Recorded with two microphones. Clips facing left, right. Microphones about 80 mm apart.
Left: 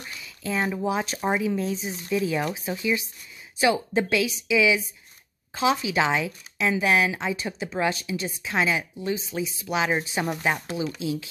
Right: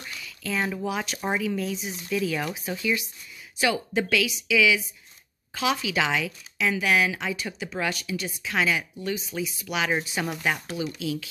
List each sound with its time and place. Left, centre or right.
0.0 s a sound: left
0.8 s speech: left
1.1 s speech: centre
1.4 s speech: left